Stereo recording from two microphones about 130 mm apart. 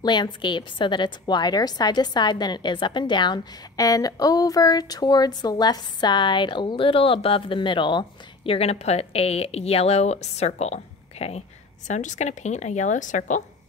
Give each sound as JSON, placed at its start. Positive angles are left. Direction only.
{"t": 0.0, "sound": "a woman's voice", "side_deg": 35}
{"t": 11.9, "sound": "a woman's voice", "side_deg": 65}